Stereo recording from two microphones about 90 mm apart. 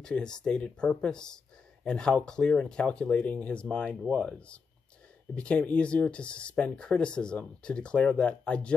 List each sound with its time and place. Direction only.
0.0 s speech: 10° left (ahead or behind)